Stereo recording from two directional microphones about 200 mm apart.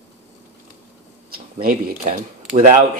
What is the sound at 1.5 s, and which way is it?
Speech, 45° right (ahead or behind).